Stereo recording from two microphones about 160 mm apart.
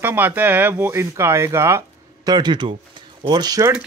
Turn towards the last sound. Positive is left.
turn(degrees=-20)  # may be behind; listen again after turning